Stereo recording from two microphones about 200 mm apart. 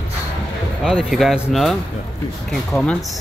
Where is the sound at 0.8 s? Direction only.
Centre (ahead or behind).